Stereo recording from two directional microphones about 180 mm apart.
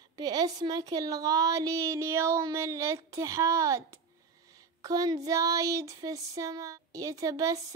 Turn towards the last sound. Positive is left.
turn(degrees=-20)  # may be behind; listen again after turning